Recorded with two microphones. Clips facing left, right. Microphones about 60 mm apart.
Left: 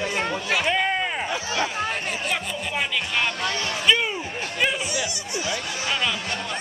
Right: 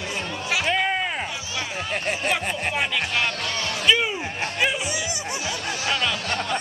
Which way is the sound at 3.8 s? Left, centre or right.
Centre.